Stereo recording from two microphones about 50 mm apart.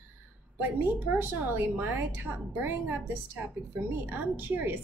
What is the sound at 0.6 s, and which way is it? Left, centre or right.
A woman's voice, right.